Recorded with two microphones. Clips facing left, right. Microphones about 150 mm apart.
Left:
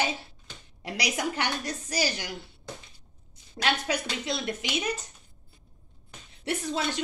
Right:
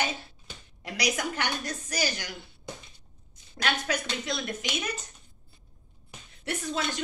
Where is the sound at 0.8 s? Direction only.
30° left (ahead or behind).